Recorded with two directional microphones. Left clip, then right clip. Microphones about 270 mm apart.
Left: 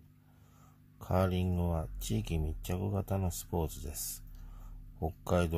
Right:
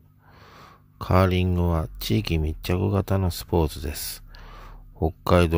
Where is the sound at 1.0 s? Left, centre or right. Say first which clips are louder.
Right 11 dB; right.